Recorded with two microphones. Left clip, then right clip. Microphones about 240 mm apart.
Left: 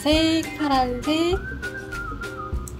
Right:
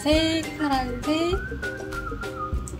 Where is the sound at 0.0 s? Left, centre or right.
Left.